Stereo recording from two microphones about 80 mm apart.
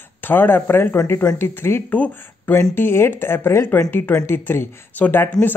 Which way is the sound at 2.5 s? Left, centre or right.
Left.